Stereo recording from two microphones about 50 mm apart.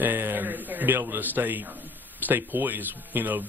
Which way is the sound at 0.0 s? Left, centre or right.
Right.